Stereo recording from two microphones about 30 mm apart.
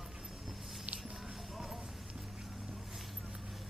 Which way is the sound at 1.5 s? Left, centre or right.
Centre.